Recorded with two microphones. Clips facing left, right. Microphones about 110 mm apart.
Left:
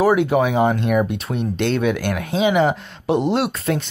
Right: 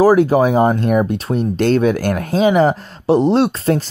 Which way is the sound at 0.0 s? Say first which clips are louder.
Right 5 dB; 35° right (ahead or behind).